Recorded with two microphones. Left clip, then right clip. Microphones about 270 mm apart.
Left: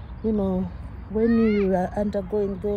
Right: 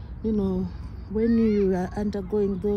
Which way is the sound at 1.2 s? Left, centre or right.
Left.